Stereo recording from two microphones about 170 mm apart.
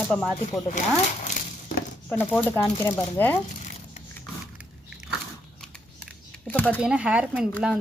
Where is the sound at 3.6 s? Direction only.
40° left (ahead or behind).